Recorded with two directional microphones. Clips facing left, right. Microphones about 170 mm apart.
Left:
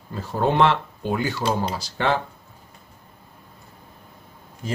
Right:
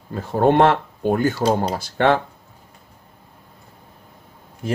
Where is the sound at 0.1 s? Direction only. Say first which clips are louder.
Right 6 dB; 55° right (ahead or behind).